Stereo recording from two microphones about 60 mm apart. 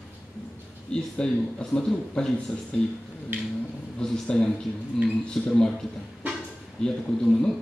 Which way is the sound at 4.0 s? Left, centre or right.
Centre.